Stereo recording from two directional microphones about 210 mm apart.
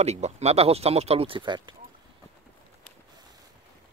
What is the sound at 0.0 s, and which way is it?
Speech, 30° right (ahead or behind).